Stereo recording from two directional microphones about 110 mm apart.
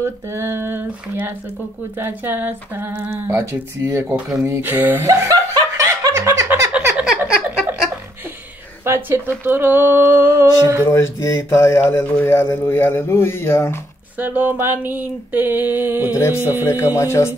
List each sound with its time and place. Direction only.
0.0 s speech: 25° right (ahead or behind)
5.3 s snicker: 30° right (ahead or behind)
7.0 s a sound: 5° right (ahead or behind)
8.8 s speech: 20° right (ahead or behind)
10.9 s speech: 25° left (ahead or behind)
14.1 s a sound: 15° right (ahead or behind)
16.1 s speech: 25° left (ahead or behind)